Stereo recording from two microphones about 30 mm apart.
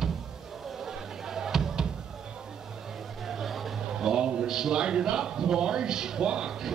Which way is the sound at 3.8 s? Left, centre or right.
Centre.